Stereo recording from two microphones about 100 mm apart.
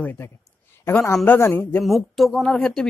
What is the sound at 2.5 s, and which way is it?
Speech, 5° left (ahead or behind).